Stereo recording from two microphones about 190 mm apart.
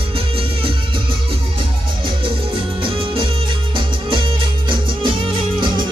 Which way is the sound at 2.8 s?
30° right (ahead or behind).